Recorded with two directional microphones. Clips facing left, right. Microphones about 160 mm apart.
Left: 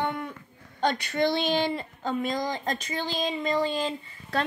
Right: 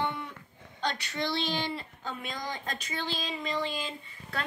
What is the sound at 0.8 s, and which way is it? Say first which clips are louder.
A woman's voice: left 8 dB; 50° left (ahead or behind).